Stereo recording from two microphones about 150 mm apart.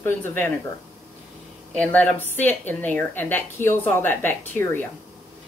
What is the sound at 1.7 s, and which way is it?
A woman's voice, 10° left (ahead or behind).